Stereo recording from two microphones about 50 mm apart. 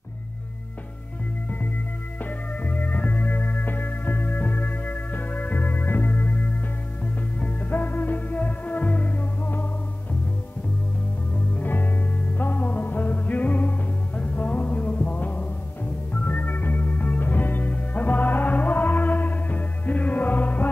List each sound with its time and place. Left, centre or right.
2.2 s music: left
11.3 s music: left